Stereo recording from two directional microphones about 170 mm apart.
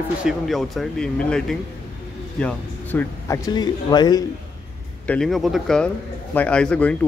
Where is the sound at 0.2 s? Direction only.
Centre (ahead or behind); by 4.2 s 25° left (ahead or behind).